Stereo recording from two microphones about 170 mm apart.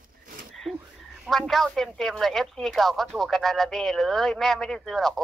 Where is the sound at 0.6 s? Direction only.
Centre (ahead or behind).